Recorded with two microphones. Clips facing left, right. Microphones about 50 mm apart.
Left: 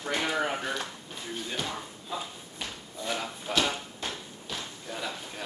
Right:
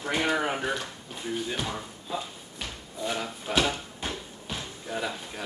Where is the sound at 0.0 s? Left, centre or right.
Right.